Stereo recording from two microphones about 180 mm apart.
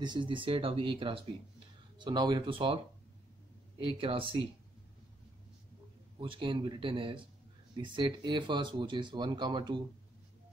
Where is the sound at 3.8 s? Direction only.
30° right (ahead or behind).